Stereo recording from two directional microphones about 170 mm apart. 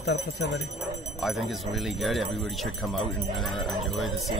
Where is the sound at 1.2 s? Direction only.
Centre (ahead or behind).